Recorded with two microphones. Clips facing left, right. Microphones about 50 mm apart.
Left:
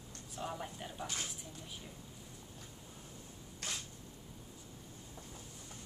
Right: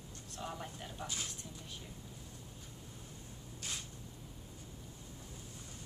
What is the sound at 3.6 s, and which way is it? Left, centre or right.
Single-lens reflex camera, left.